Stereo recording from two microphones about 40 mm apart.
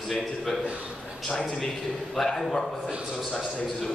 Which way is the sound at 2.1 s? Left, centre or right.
Centre.